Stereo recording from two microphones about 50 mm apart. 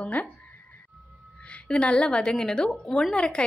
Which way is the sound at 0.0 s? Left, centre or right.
Left.